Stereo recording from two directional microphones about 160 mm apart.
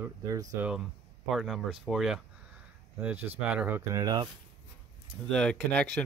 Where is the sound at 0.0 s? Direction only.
20° right (ahead or behind).